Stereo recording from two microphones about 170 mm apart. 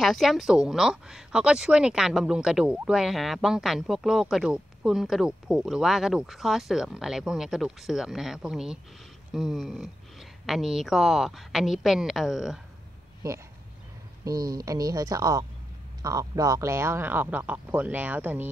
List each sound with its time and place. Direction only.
0.0 s speech: centre (ahead or behind)
14.2 s speech: 20° right (ahead or behind)